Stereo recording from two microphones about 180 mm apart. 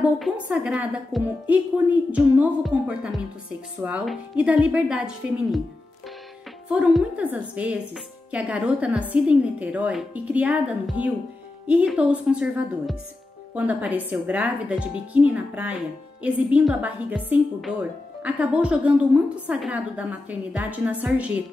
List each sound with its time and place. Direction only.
0.2 s a woman's voice: 5° right (ahead or behind)
6.7 s a woman's voice: 5° right (ahead or behind)